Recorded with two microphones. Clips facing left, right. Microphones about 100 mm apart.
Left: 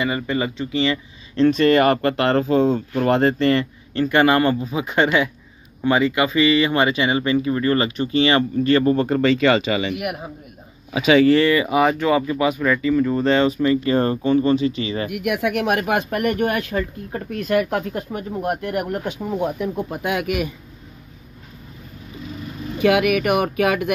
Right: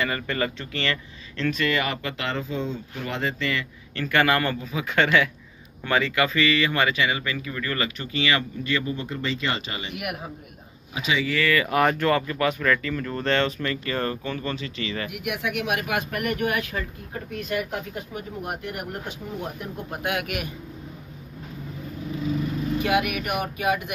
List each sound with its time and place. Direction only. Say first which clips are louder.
0.0 s speech: left 4 dB; 15° left (ahead or behind)
1.6 s speech: left 10 dB; 45° left (ahead or behind)
3.9 s speech: left 6 dB; 25° left (ahead or behind); by 9.9 s 90° left
9.9 s a man's voice: left 5 dB; centre (ahead or behind)
10.9 s speech: left 11 dB; 70° left (ahead or behind)
11.4 s speech: left 5 dB; 20° left (ahead or behind)
11.7 s speech: left 4 dB; 10° left (ahead or behind)
15.0 s speech: left 7 dB; 55° left (ahead or behind); by 16.8 s 35° left (ahead or behind)
17.1 s speech: left 8 dB; 50° left (ahead or behind)
22.8 s speech: left 9 dB; 90° left; by 23.9 s 75° left (ahead or behind)